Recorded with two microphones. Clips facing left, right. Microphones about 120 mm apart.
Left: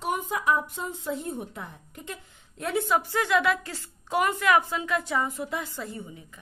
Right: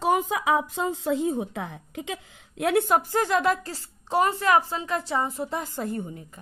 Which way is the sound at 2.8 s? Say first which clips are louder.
Right 3 dB; 45° right (ahead or behind).